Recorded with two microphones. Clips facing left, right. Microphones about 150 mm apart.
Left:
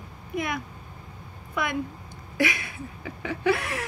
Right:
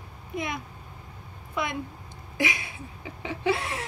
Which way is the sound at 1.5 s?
25° right (ahead or behind).